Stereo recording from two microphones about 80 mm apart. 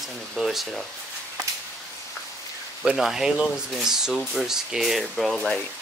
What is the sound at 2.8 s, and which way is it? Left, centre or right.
Speech, centre.